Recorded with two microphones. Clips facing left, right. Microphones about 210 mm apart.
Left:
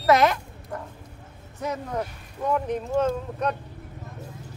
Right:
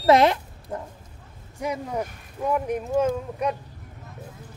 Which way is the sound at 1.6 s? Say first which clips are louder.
Right 1 dB; 10° right (ahead or behind).